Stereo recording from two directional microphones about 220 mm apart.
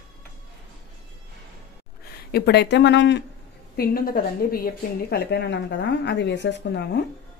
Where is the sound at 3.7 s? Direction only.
45° left (ahead or behind).